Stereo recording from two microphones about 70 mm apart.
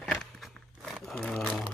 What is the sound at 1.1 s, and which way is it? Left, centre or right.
Crumpling, centre.